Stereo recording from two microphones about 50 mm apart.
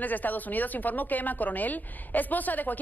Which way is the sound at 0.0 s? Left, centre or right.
Left.